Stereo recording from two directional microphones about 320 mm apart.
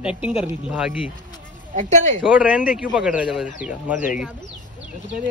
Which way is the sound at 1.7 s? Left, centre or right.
Right.